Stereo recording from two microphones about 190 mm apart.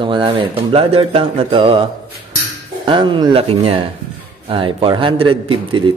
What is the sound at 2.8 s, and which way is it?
Speech, 25° right (ahead or behind).